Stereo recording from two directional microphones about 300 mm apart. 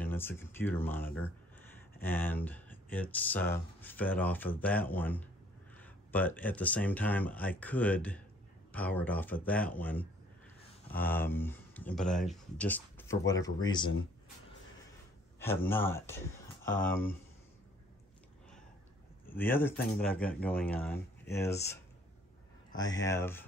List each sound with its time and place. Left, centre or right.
0.0 s speech: centre
15.3 s speech: centre
19.2 s speech: centre
23.0 s speech: centre